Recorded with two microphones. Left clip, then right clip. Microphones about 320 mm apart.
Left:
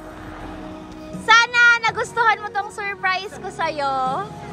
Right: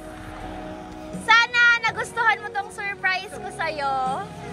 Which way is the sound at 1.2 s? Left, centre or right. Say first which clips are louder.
Left 3 dB; centre.